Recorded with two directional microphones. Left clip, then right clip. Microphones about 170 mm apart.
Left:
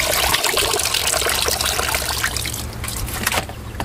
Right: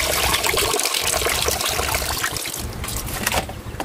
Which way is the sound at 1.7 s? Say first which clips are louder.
Left 2 dB; 10° right (ahead or behind).